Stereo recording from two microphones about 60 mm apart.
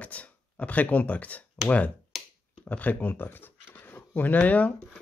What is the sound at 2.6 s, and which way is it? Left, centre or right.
Speech, left.